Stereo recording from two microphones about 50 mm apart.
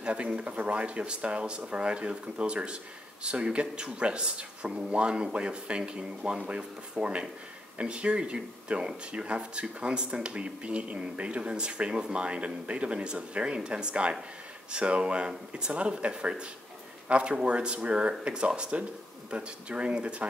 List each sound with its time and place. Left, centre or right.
0.0 s speech: right